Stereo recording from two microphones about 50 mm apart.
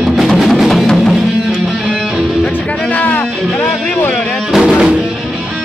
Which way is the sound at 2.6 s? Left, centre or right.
Left.